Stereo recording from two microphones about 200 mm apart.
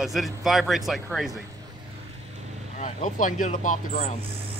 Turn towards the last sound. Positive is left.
turn(degrees=40)  # may be behind; listen again after turning